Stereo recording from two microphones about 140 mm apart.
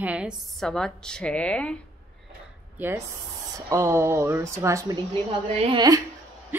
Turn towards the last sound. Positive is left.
turn(degrees=-30)  # may be behind; listen again after turning